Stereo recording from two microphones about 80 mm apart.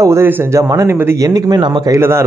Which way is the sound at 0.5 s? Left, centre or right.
Right.